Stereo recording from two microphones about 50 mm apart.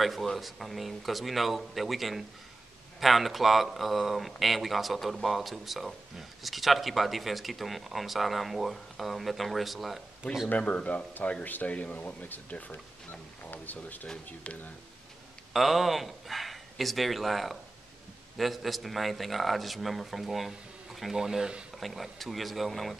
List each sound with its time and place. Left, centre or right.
0.0 s speech: centre
10.5 s speech: left
13.1 s speech: left
14.0 s speech: left
15.5 s speech: centre